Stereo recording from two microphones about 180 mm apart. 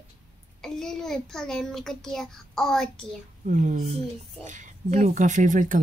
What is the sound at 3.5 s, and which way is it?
Speech, 45° right (ahead or behind).